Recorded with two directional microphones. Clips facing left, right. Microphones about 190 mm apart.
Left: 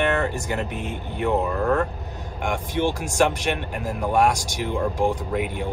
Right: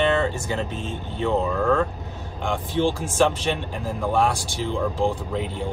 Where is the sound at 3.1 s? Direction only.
15° left (ahead or behind).